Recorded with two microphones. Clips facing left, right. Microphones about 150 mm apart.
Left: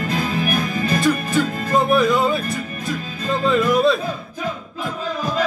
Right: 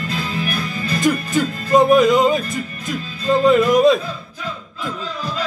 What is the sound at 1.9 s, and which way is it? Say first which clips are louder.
Speech: right 4 dB; 20° right (ahead or behind).